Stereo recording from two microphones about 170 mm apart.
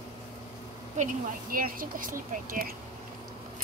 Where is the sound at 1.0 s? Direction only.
55° right (ahead or behind).